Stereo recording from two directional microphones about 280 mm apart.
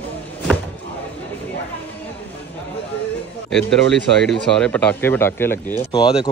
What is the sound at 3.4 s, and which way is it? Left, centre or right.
A man's voice, centre.